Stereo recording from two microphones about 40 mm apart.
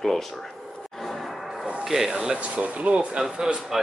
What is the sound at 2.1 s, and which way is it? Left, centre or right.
Speech, centre.